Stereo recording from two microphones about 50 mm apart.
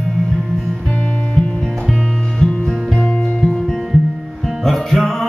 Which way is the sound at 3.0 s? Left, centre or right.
Left.